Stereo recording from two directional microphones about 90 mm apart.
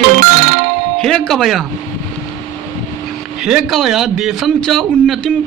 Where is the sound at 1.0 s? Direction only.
5° left (ahead or behind).